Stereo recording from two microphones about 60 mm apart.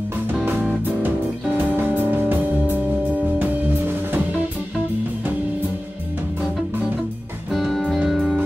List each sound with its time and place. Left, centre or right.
1.7 s music: right
7.5 s music: centre